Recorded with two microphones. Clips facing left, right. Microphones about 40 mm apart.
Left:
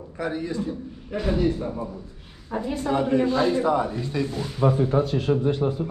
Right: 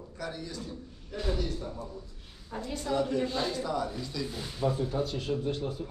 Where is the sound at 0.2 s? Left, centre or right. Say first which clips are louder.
Left 11 dB; left.